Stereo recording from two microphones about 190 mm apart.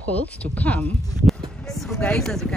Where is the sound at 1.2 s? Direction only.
Centre (ahead or behind).